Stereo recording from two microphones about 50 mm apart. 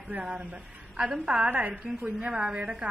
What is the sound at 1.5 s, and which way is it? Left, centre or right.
A woman's voice, right.